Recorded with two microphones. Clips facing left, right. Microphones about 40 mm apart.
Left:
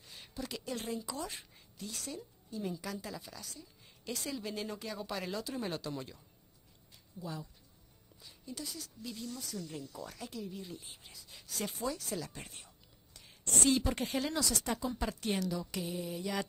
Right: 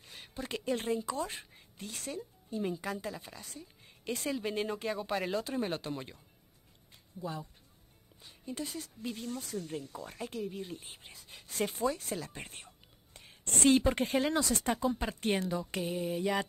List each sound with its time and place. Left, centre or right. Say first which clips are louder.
0.0 s a woman's voice: right 1 dB; right
14.7 s speech: right 4 dB; right